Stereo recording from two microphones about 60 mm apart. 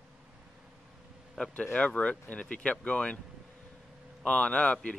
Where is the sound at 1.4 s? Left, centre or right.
Centre.